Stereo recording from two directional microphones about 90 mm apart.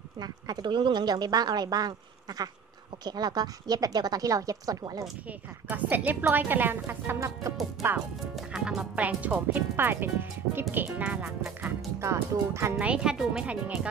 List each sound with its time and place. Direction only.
0.2 s speech: 50° right (ahead or behind)
5.7 s speech: 20° right (ahead or behind)
8.5 s speech: 5° right (ahead or behind)
8.9 s speech: 15° right (ahead or behind)
12.0 s speech: 30° right (ahead or behind)
12.7 s speech: 15° right (ahead or behind)